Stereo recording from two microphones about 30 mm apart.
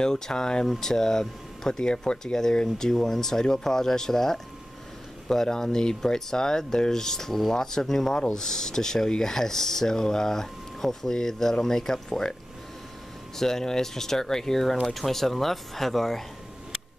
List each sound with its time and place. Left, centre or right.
0.0 s speech: left
13.4 s speech: centre